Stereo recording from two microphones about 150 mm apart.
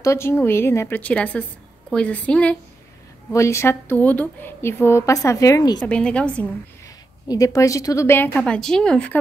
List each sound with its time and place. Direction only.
0.0 s a woman's voice: 20° left (ahead or behind)
5.8 s a woman's voice: 5° left (ahead or behind)
7.2 s a woman's voice: 25° left (ahead or behind)
8.4 s speech: 5° left (ahead or behind)